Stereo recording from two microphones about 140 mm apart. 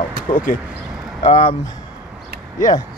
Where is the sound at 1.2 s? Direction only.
40° left (ahead or behind).